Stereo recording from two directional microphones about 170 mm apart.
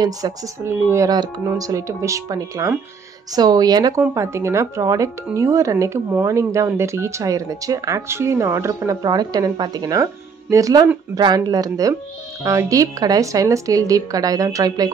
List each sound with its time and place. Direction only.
0.0 s speech: 20° right (ahead or behind)